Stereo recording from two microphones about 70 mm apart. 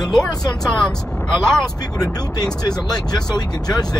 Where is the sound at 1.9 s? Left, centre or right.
Left.